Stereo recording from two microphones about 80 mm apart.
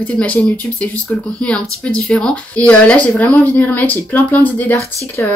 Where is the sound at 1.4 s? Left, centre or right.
Centre.